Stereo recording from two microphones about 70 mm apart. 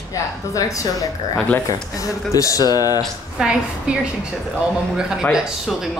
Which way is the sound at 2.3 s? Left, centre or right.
Left.